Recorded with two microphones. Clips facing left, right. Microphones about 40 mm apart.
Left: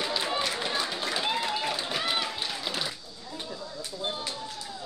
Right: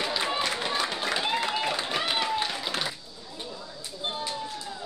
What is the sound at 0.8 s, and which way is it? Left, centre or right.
Run, centre.